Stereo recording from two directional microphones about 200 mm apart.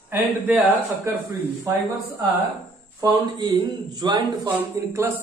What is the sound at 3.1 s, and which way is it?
Speech, 20° right (ahead or behind).